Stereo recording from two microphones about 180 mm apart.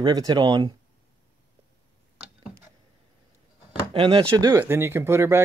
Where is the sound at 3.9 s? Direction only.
25° right (ahead or behind).